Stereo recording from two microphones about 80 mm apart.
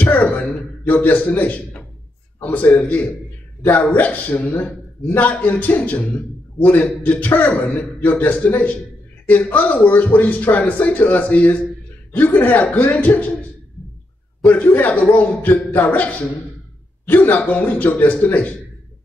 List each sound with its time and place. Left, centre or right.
0.0 s a man's voice: centre
14.4 s a man's voice: left